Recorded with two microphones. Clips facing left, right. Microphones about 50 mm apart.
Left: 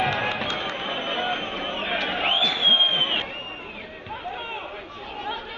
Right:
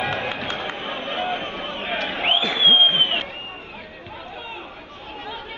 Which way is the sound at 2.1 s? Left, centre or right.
Right.